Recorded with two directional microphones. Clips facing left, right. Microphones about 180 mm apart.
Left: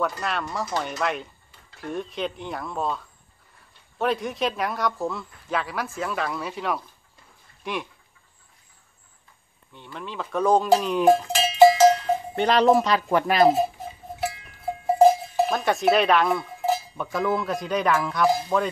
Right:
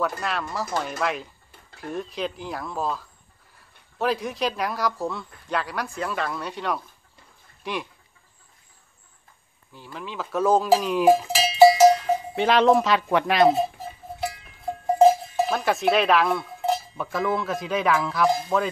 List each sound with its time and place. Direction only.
0.2 s speech: centre (ahead or behind)
9.9 s speech: centre (ahead or behind)
12.4 s speech: centre (ahead or behind)